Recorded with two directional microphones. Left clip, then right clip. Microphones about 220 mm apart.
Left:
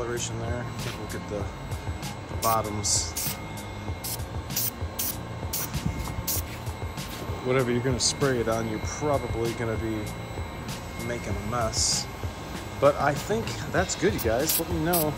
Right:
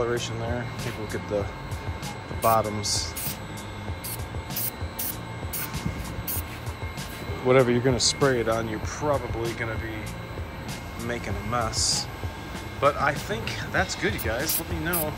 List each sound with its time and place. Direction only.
0.0 s speech: 5° left (ahead or behind)
2.4 s speech: centre (ahead or behind)
7.4 s speech: centre (ahead or behind)
8.5 s speech: 15° left (ahead or behind)
11.1 s speech: 15° left (ahead or behind)